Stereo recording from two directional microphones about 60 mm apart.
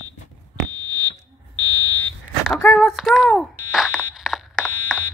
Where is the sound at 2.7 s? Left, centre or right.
Centre.